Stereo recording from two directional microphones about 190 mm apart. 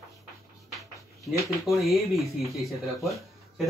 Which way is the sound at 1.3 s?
Centre (ahead or behind).